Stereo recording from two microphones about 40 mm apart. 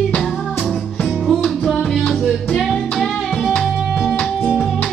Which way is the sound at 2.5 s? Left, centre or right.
Centre.